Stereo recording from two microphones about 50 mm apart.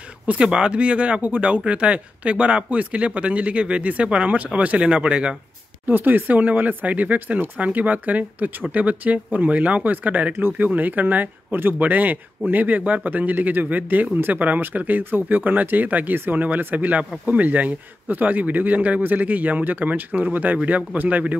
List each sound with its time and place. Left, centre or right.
0.3 s speech: centre
5.9 s speech: right
10.3 s speech: right
10.7 s speech: right